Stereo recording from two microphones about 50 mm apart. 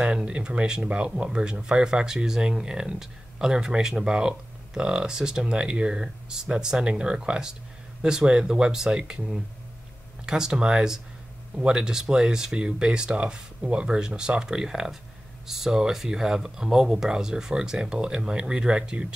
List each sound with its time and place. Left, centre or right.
0.0 s speech: right